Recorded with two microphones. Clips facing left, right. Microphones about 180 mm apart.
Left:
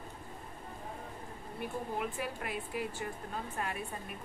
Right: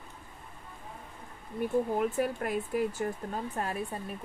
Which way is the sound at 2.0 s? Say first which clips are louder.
Right 8 dB; 45° right (ahead or behind).